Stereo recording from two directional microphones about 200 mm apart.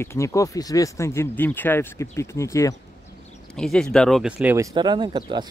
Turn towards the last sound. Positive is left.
turn(degrees=-25)  # may be behind; listen again after turning